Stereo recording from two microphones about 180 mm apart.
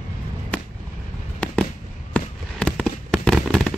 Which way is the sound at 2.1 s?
5° left (ahead or behind).